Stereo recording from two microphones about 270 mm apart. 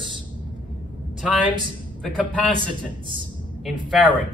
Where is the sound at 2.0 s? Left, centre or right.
Centre.